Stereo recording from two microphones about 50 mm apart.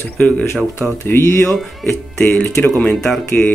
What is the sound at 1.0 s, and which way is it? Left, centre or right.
Speech, left.